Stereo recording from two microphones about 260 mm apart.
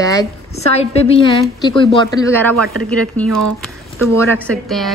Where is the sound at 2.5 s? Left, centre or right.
Right.